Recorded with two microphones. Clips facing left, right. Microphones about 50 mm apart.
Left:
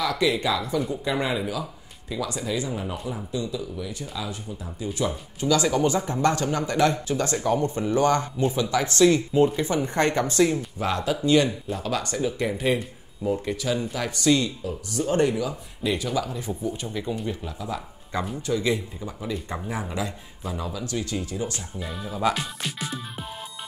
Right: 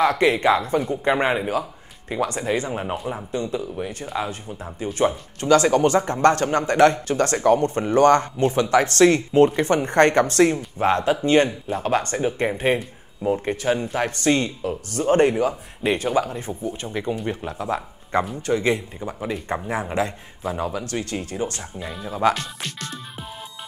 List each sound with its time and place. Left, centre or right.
0.0 s speech: right
21.7 s speech: centre
22.3 s speech: centre